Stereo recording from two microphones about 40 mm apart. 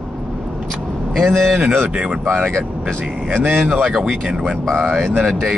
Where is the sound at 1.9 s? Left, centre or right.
Right.